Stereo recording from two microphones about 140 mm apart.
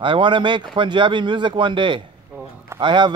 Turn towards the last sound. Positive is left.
turn(degrees=-35)  # may be behind; listen again after turning